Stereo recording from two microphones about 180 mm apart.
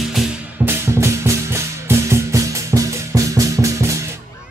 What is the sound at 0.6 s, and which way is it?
Music, 15° right (ahead or behind).